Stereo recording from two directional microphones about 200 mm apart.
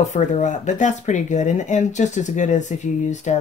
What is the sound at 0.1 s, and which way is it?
Speech, 35° left (ahead or behind).